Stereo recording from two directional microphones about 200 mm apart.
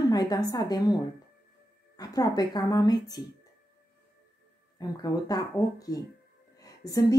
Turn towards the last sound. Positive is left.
turn(degrees=20)  # may be behind; listen again after turning